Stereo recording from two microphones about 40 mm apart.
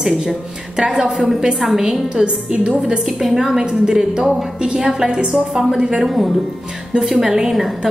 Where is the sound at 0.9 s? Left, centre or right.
Centre.